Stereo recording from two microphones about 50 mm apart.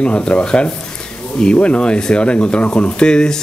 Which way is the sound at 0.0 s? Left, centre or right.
Left.